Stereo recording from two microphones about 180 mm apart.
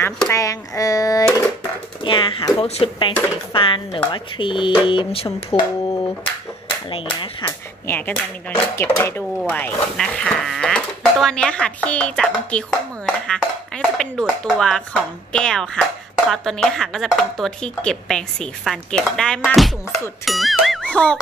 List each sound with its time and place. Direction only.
0.0 s speech: 15° left (ahead or behind)
2.0 s speech: 25° left (ahead or behind)
6.9 s speech: 30° left (ahead or behind)
7.8 s speech: 10° left (ahead or behind)
20.2 s music: centre (ahead or behind)